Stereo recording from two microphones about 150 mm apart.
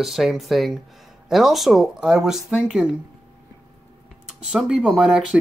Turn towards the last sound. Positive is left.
turn(degrees=-5)  # may be behind; listen again after turning